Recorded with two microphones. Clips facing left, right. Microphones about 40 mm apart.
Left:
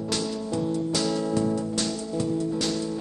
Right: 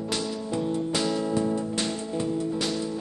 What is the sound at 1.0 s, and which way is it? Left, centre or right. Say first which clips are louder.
Music: even; right.